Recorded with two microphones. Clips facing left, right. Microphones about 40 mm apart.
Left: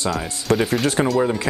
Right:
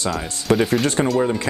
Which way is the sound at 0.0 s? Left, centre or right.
Centre.